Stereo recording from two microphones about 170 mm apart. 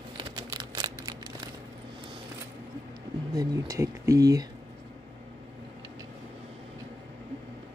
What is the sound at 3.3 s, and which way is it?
Speech, 20° right (ahead or behind).